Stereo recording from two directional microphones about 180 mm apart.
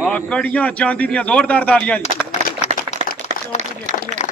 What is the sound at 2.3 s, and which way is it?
Run, 40° left (ahead or behind).